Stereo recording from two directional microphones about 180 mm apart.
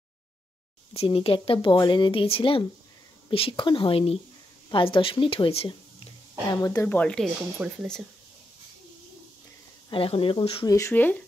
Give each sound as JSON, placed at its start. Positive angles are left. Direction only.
{"t": 0.9, "sound": "speech", "side_deg": 30}
{"t": 6.9, "sound": "speech", "side_deg": 5}
{"t": 7.5, "sound": "speech", "side_deg": -5}
{"t": 9.8, "sound": "speech", "side_deg": 30}
{"t": 10.7, "sound": "speech", "side_deg": 15}